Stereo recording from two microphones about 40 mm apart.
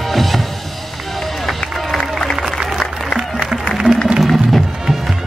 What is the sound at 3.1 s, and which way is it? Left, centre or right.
Music, centre.